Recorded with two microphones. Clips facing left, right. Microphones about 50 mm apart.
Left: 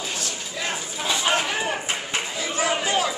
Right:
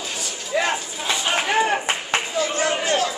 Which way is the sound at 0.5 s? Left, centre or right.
Right.